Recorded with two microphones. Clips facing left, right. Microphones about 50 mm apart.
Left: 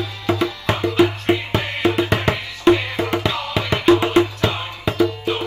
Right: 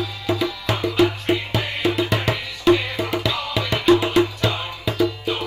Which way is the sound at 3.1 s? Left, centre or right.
Centre.